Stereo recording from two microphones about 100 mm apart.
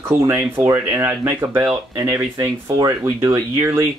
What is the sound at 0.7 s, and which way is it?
Speech, 25° right (ahead or behind).